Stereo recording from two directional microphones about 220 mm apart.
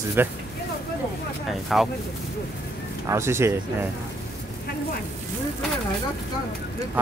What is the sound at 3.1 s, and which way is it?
Speech, 10° right (ahead or behind).